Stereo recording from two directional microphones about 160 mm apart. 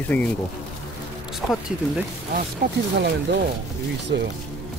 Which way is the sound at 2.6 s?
65° right (ahead or behind).